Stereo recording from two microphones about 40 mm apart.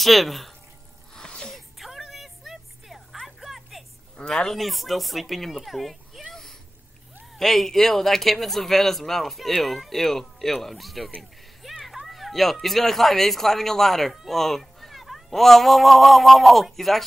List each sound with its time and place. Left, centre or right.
0.0 s speech: centre
1.1 s sneeze: centre
1.5 s a sound: centre
4.2 s speech: left
4.5 s speech: centre
7.3 s speech: centre
11.6 s children playing: centre
12.6 s speech: centre